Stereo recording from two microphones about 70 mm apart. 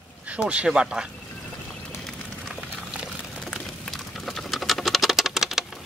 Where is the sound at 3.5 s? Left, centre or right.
Centre.